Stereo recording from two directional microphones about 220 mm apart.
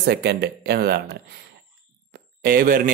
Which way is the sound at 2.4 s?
40° right (ahead or behind).